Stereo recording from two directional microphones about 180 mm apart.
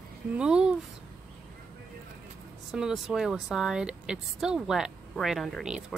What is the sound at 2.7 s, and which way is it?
Speech, centre (ahead or behind).